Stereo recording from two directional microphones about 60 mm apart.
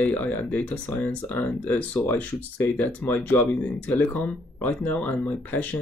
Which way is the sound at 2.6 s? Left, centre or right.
Left.